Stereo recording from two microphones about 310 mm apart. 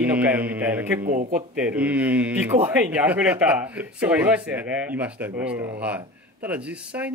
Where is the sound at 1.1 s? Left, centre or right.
Right.